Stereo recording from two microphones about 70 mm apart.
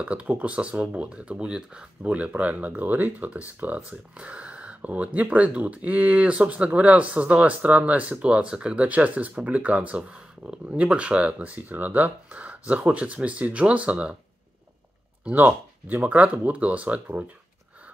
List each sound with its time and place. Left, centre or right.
0.0 s speech: centre
15.3 s speech: right